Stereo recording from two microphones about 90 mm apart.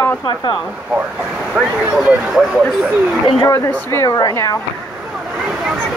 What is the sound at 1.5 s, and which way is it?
Speech, 10° right (ahead or behind).